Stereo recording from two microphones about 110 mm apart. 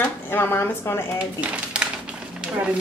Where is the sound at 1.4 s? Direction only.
10° right (ahead or behind).